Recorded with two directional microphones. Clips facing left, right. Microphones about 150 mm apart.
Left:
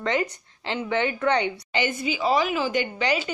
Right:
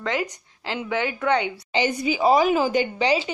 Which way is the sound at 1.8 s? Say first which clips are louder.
Right 4 dB; 40° right (ahead or behind).